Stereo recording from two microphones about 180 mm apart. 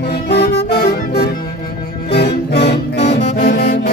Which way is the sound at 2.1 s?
65° left (ahead or behind).